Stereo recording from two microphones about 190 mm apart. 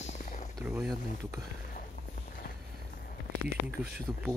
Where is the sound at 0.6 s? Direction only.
5° right (ahead or behind).